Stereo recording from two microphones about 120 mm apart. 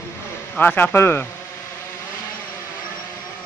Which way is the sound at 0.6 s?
15° left (ahead or behind).